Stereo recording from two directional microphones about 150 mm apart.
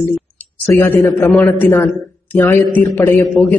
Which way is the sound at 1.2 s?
20° left (ahead or behind).